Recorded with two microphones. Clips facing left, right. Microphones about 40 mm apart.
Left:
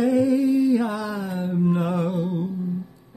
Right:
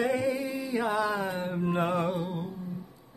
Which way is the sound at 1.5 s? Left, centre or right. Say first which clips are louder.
Left 6 dB; right.